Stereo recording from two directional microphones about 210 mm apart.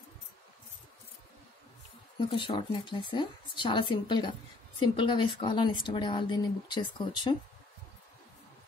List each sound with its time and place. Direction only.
2.1 s a woman's voice: 25° left (ahead or behind)